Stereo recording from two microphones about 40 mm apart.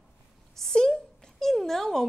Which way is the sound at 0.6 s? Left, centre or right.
Centre.